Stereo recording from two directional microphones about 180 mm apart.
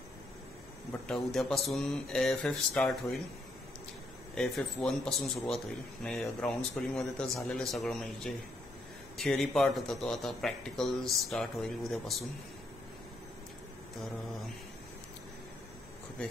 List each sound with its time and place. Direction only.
1.0 s speech: centre (ahead or behind)
4.4 s speech: centre (ahead or behind)
13.9 s speech: centre (ahead or behind)